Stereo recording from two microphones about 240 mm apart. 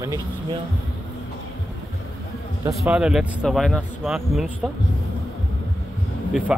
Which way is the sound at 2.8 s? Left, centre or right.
Centre.